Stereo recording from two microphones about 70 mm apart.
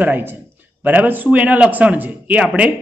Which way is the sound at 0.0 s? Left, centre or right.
Right.